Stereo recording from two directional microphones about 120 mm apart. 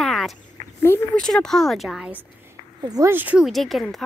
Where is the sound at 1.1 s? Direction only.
5° left (ahead or behind).